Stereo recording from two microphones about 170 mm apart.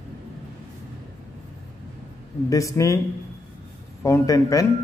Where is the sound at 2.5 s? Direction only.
20° left (ahead or behind).